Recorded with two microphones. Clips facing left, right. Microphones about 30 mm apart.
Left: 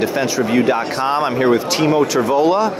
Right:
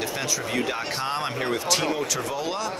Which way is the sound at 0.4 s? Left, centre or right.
Centre.